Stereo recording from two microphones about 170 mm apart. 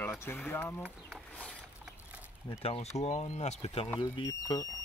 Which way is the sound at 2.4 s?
35° left (ahead or behind).